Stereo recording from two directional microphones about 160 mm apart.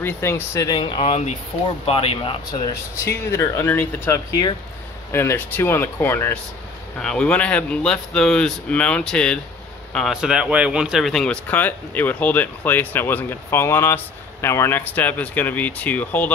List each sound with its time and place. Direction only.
0.0 s speech: 15° left (ahead or behind)
0.7 s speech: 30° left (ahead or behind)
3.3 s speech: 15° left (ahead or behind)